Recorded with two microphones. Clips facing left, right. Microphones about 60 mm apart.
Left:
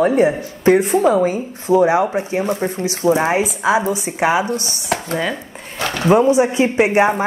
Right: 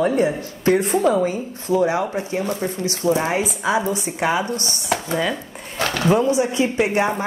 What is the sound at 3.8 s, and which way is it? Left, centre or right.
Speech, centre.